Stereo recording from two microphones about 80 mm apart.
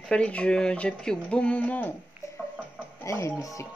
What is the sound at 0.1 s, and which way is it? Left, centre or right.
Speech, centre.